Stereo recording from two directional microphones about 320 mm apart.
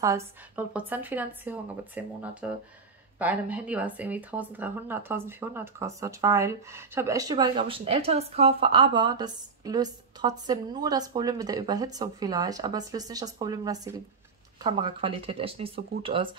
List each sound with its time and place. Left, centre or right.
0.0 s speech: centre